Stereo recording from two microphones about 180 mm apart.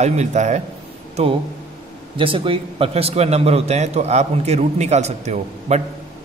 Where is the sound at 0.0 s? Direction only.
40° right (ahead or behind).